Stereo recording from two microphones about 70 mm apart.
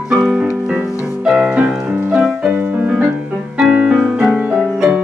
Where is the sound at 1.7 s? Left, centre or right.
Centre.